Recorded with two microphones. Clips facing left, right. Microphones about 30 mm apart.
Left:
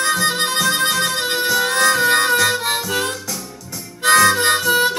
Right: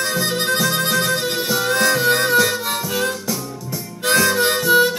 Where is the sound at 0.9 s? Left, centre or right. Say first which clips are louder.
Even; centre.